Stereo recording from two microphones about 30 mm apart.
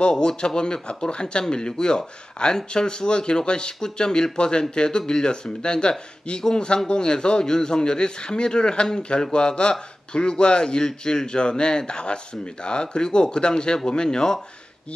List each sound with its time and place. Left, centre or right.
0.2 s speech: left